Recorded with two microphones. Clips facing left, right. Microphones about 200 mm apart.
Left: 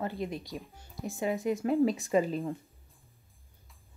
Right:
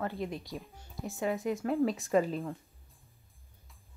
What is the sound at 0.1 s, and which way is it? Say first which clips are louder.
Speech: left 1 dB; centre (ahead or behind).